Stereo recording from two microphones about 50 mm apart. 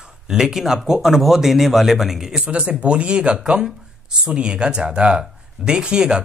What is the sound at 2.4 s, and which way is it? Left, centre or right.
Speech, right.